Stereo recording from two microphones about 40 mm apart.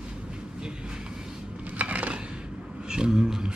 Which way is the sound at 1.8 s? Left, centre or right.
Right.